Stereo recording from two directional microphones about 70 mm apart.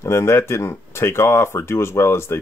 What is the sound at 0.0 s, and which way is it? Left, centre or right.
Speech, left.